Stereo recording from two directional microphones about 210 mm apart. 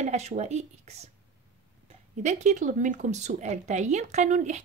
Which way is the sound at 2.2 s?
35° right (ahead or behind).